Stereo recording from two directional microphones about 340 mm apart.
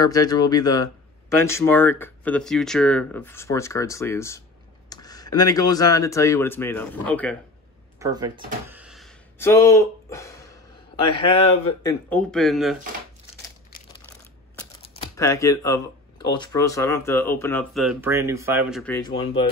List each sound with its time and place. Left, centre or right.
0.0 s speech: centre
8.0 s speech: centre
8.6 s a sound: centre
11.1 s speech: centre
14.8 s speech: centre
18.9 s speech: centre